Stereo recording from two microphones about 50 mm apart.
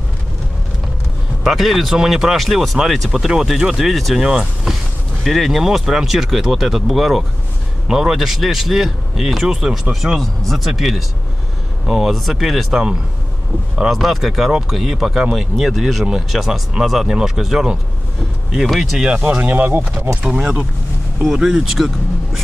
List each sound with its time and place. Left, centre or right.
1.4 s speech: centre
10.4 s speech: centre
13.8 s speech: centre
19.0 s speech: right
19.4 s speech: right
20.2 s speech: centre
21.7 s vehicle: centre